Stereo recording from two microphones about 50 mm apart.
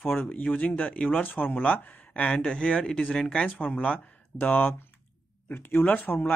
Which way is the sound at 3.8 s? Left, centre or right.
Left.